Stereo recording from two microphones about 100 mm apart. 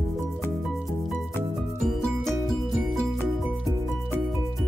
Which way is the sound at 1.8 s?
5° left (ahead or behind).